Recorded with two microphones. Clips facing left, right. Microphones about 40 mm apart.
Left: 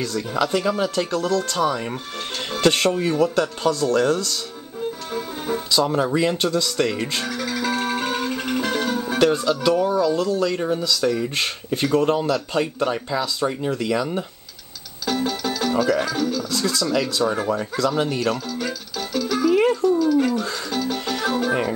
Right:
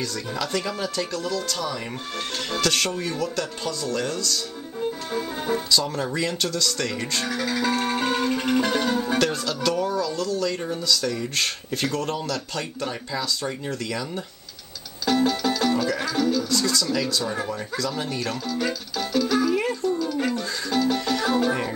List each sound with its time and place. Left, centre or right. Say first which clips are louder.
0.4 s speech: left 7 dB; centre
4.7 s music: even; centre
5.7 s speech: left 5 dB; left
7.2 s music: even; centre
9.2 s speech: left 5 dB; centre
15.0 s music: right 2 dB; centre
16.0 s speech: even; centre
16.4 s speech: left 1 dB; left
17.2 s speech: left 6 dB; centre
17.6 s speech: left 6 dB; left
18.5 s music: right 1 dB; centre